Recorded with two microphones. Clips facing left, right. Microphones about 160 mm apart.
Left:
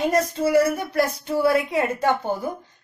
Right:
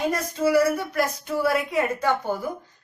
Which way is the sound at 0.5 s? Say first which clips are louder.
Right 1 dB; 30° left (ahead or behind).